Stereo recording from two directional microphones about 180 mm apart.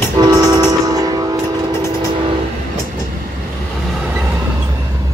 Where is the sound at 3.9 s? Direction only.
5° right (ahead or behind).